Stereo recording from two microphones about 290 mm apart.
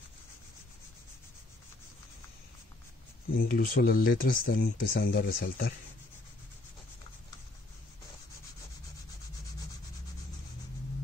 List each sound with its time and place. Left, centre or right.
3.3 s speech: left